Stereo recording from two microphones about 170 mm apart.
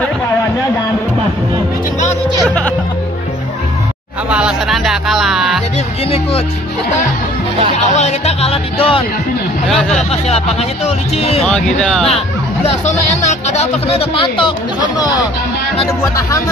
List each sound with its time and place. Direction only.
2.4 s speech: 5° left (ahead or behind)
4.3 s speech: 5° right (ahead or behind)
7.9 s speech: 40° left (ahead or behind)
9.7 s speech: 5° left (ahead or behind)
11.1 s speech: 35° left (ahead or behind)
11.4 s speech: 5° left (ahead or behind)
12.6 s speech: 40° left (ahead or behind)